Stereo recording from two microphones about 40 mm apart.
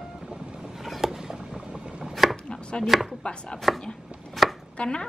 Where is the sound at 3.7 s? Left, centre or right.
Centre.